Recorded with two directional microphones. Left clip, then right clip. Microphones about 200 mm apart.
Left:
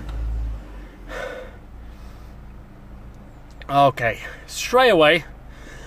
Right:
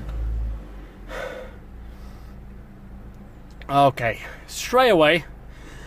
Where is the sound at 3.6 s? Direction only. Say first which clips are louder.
Left 1 dB; centre (ahead or behind).